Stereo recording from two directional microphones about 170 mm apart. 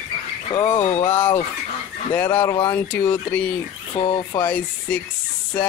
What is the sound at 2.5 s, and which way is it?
Speech, 20° left (ahead or behind).